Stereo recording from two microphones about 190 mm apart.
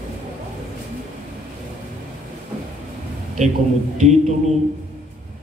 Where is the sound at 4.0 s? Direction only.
35° right (ahead or behind).